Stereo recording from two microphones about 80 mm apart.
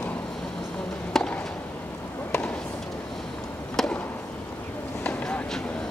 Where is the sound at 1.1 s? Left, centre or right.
Centre.